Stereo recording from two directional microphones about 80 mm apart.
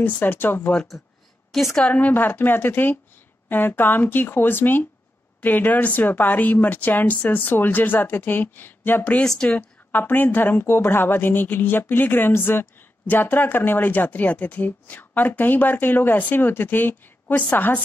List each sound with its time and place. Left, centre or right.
0.0 s a woman's voice: left
1.8 s a woman's voice: centre